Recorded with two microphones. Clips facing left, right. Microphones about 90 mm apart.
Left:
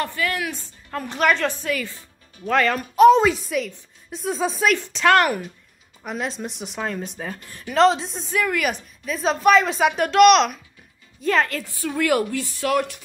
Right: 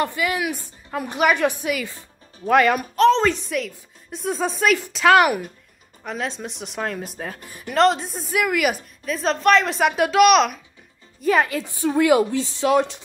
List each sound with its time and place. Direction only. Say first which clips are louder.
0.0 s a woman's voice: right 2 dB; 15° right (ahead or behind)
3.0 s a woman's voice: left 4 dB; 10° left (ahead or behind); by 13.0 s 20° right (ahead or behind)